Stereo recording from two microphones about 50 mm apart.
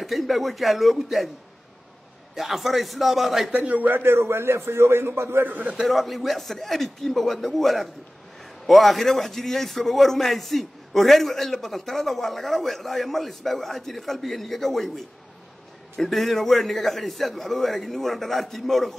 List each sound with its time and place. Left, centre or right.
0.0 s a man's voice: centre
2.3 s a man's voice: centre
3.5 s a man's voice: right
4.0 s a man's voice: right
5.9 s a man's voice: centre